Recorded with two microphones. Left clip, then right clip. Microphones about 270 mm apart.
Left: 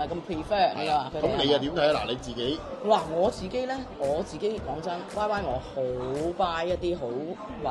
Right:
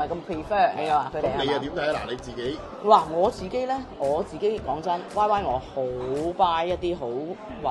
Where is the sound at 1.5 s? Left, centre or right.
Left.